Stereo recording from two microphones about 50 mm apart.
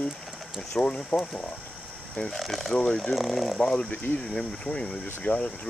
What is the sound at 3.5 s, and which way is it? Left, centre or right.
Speech, centre.